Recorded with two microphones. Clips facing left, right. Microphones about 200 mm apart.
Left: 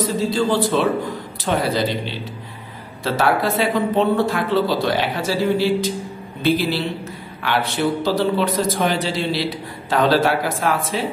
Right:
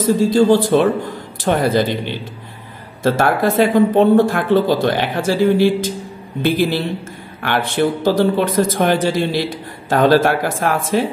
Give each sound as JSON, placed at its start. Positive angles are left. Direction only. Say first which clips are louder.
{"t": 0.0, "sound": "speech", "louder": "right 6 dB", "side_deg": -50}